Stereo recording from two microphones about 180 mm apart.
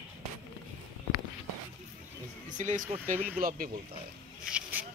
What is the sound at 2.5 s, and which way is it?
Speech, 45° right (ahead or behind).